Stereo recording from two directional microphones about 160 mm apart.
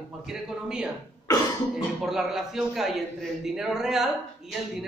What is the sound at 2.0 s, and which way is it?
A man's voice, centre (ahead or behind).